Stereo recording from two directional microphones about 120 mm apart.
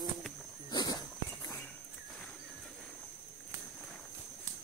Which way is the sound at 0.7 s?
40° left (ahead or behind).